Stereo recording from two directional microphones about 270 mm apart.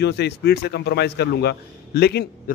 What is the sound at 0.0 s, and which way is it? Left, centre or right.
A man's voice, left.